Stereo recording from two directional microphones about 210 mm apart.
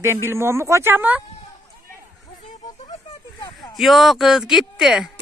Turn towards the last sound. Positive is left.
turn(degrees=0)  # may be behind; listen again after turning